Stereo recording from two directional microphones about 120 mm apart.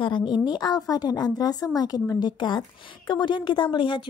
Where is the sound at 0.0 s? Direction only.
40° left (ahead or behind).